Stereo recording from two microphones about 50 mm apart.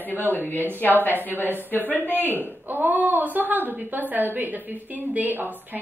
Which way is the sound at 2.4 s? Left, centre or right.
Right.